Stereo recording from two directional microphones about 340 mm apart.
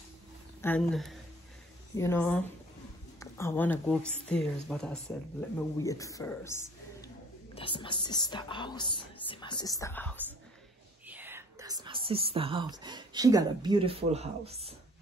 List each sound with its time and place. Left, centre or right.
0.6 s speech: centre
11.1 s speech: centre